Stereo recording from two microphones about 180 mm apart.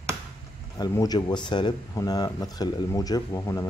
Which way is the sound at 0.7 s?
20° left (ahead or behind).